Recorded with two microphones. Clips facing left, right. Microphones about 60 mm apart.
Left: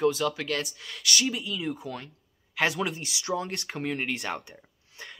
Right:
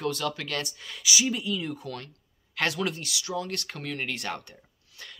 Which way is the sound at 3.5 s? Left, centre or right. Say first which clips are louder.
Left 3 dB; centre.